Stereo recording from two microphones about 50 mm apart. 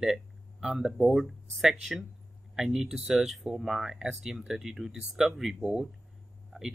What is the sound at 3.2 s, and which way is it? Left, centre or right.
Speech, centre.